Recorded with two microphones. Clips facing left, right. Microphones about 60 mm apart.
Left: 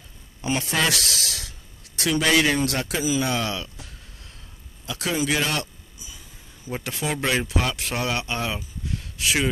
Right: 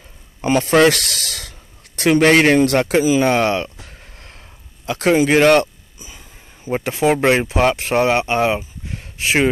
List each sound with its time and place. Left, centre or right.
0.5 s speech: right
5.6 s a sound: right
6.6 s speech: right